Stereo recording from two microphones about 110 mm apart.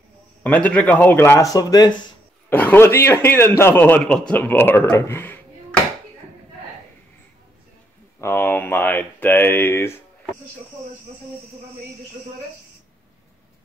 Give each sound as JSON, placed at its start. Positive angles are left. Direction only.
{"t": 0.4, "sound": "speech", "side_deg": 15}
{"t": 1.5, "sound": "speech", "side_deg": 35}
{"t": 2.5, "sound": "speech", "side_deg": 15}
{"t": 8.2, "sound": "speech", "side_deg": 20}